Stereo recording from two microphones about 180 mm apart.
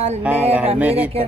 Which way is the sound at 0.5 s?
10° right (ahead or behind).